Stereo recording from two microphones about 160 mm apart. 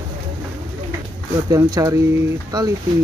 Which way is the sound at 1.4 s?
20° right (ahead or behind).